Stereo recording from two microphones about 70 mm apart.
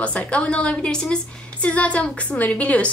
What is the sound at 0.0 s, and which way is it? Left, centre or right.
A woman's voice, centre.